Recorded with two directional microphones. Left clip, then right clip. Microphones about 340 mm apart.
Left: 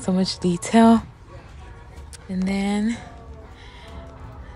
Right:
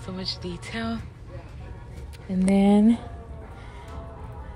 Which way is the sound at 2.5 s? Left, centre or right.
Centre.